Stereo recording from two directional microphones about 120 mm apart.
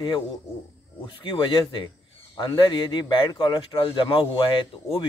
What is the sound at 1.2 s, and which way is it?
Speech, 40° left (ahead or behind).